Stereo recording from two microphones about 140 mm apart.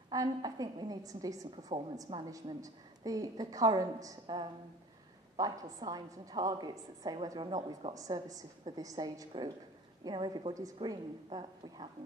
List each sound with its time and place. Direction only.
0.1 s a woman's voice: 25° right (ahead or behind)